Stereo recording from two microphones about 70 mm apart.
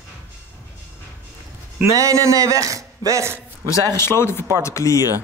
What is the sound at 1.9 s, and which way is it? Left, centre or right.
Speech, right.